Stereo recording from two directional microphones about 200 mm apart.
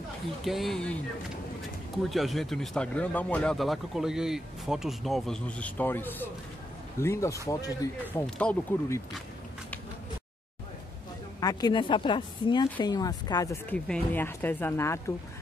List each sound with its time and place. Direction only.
0.4 s speech: centre (ahead or behind)
2.0 s a woman's voice: centre (ahead or behind)
11.3 s a woman's voice: 20° left (ahead or behind)